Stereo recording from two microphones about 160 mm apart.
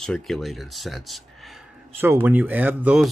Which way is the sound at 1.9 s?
15° right (ahead or behind).